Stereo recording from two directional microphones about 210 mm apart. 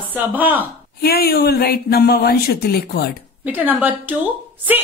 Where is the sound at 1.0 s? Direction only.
45° left (ahead or behind).